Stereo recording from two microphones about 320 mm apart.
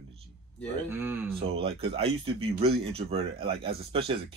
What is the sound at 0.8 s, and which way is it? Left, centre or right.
Speech, centre.